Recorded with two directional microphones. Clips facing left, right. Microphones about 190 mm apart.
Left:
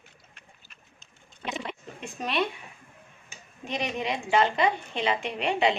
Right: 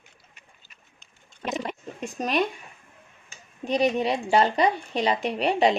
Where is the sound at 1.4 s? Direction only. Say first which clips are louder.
Right 5 dB; 40° right (ahead or behind).